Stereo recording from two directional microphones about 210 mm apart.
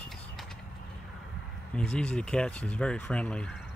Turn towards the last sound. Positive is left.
turn(degrees=5)  # may be behind; listen again after turning